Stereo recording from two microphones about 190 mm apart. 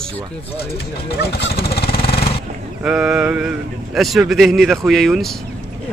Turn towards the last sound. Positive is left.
turn(degrees=0)  # may be behind; listen again after turning